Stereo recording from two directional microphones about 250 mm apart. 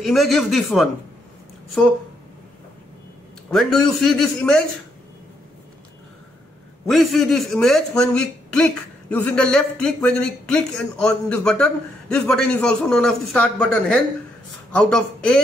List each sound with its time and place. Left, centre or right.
0.0 s a man's voice: centre
3.4 s a man's voice: centre
6.9 s a man's voice: centre